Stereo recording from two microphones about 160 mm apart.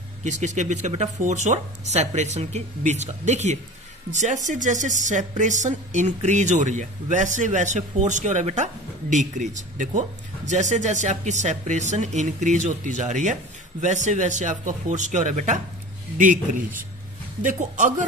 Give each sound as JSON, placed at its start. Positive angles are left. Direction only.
{"t": 0.2, "sound": "speech", "side_deg": -50}